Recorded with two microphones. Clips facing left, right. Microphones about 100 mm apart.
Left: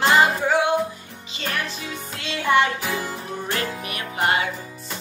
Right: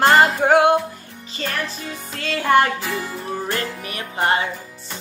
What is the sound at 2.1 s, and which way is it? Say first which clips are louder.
Music: right 3 dB; 45° right (ahead or behind).